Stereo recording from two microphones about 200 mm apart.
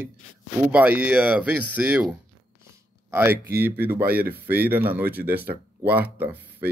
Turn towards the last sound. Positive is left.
turn(degrees=-10)  # may be behind; listen again after turning